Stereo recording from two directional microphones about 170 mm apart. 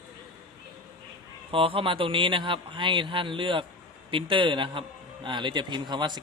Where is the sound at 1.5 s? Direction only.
30° right (ahead or behind).